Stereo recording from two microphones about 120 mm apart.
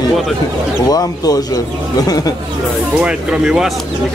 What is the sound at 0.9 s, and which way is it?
Speech, 30° left (ahead or behind).